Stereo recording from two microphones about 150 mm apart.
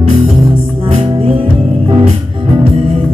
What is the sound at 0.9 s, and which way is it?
Music, 40° right (ahead or behind).